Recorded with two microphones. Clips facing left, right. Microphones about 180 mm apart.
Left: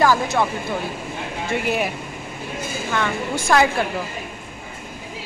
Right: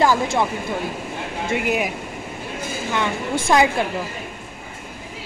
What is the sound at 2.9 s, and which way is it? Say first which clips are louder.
Speech: right 1 dB; 20° right (ahead or behind).